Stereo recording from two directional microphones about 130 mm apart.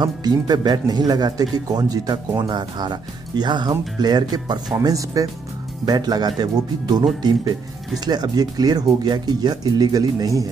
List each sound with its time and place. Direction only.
0.0 s speech: 30° right (ahead or behind)